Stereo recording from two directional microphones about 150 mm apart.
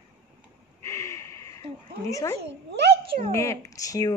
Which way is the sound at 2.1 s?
20° left (ahead or behind).